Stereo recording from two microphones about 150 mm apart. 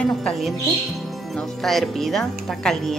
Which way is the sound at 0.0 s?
5° left (ahead or behind).